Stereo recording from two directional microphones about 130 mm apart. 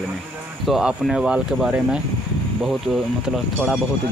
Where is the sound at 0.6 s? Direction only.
Centre (ahead or behind).